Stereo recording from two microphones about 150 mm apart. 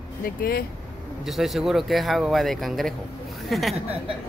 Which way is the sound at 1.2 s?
Centre (ahead or behind).